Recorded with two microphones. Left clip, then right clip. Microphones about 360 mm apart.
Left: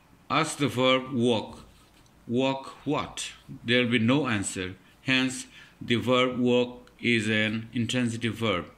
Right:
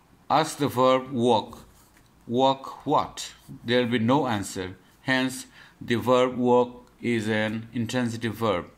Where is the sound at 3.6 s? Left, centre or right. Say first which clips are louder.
Even; right.